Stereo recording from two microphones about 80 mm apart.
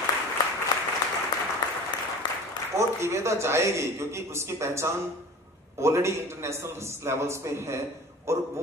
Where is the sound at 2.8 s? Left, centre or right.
Right.